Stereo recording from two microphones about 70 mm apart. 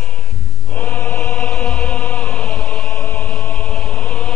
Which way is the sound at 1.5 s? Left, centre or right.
Centre.